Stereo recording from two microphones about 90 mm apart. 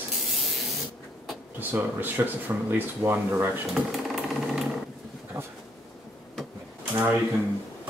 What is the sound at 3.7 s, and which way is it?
Sewing machine, 5° right (ahead or behind).